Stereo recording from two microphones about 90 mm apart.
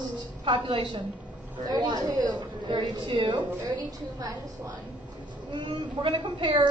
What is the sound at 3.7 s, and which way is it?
Speech, 40° right (ahead or behind).